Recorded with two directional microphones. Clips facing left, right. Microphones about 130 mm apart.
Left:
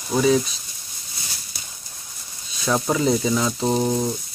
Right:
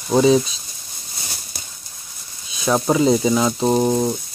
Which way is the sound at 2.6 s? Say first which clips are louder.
Right 4 dB; 20° right (ahead or behind).